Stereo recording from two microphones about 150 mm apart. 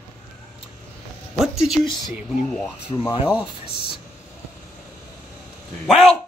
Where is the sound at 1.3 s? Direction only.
Centre (ahead or behind).